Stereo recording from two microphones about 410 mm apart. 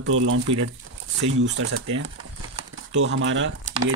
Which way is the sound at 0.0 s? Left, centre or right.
Right.